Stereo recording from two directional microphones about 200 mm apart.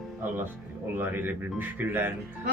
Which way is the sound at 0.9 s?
10° right (ahead or behind).